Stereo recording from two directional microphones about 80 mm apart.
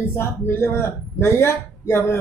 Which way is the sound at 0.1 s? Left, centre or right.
Left.